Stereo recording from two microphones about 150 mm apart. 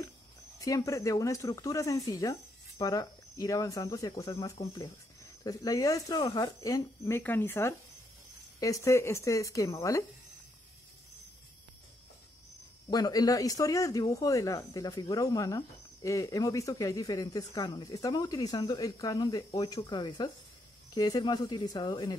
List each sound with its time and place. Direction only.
0.6 s speech: 20° left (ahead or behind)
12.9 s speech: 25° left (ahead or behind)